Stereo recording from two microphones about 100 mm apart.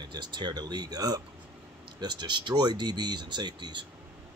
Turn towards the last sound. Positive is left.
turn(degrees=-50)  # may be behind; listen again after turning